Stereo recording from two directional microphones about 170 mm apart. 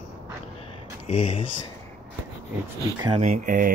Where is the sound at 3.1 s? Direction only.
45° right (ahead or behind).